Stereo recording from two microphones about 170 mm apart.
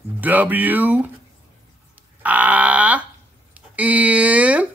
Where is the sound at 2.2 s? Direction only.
10° right (ahead or behind).